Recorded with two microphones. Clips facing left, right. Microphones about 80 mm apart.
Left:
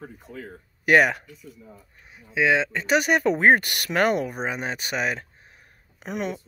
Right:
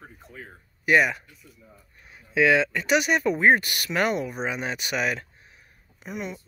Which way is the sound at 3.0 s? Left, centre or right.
Left.